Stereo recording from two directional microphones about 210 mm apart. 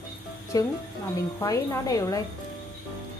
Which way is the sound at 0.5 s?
15° left (ahead or behind).